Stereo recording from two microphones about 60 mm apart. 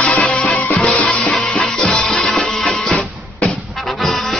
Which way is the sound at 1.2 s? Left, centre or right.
Centre.